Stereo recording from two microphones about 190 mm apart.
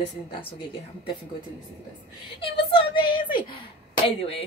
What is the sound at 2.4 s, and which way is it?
A woman's voice, 30° left (ahead or behind).